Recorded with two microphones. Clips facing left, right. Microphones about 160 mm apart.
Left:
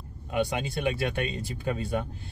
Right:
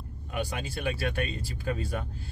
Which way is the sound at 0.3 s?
25° left (ahead or behind).